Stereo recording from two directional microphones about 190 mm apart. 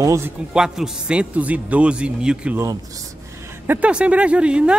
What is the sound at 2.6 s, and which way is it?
A man's voice, 15° right (ahead or behind).